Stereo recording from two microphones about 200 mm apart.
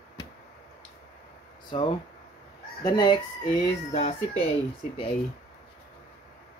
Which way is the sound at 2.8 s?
20° left (ahead or behind).